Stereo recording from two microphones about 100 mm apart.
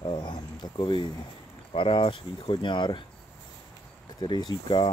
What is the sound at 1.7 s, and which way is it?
Speech, 60° left (ahead or behind).